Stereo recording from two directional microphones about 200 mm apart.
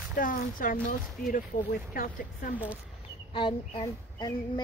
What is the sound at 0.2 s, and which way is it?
A woman's voice, 45° left (ahead or behind).